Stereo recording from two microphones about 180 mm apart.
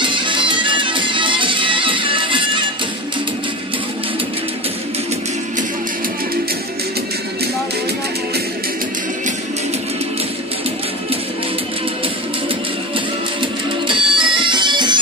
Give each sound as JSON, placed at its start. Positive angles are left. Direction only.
{"t": 0.0, "sound": "music", "side_deg": -25}
{"t": 13.4, "sound": "music", "side_deg": -30}